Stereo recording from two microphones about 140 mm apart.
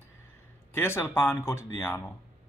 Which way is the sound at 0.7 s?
15° left (ahead or behind).